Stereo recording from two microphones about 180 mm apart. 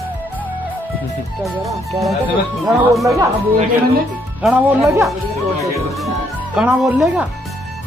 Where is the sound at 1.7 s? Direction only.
Centre (ahead or behind).